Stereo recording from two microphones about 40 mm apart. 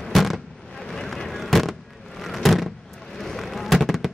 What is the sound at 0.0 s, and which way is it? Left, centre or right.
Fireworks, centre.